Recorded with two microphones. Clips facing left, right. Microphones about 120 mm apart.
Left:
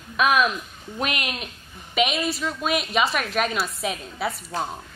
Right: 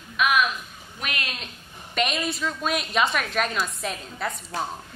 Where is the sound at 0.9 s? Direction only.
20° left (ahead or behind).